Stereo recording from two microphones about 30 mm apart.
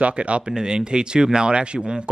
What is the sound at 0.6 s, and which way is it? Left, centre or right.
Speech, right.